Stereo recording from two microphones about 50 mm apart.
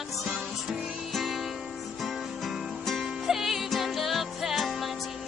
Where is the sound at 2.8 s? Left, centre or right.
Centre.